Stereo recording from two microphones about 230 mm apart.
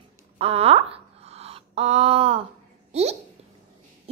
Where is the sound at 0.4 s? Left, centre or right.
Right.